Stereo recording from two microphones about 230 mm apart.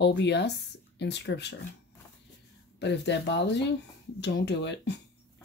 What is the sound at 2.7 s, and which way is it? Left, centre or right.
Speech, left.